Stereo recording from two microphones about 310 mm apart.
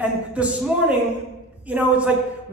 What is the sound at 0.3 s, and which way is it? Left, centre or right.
Speech, centre.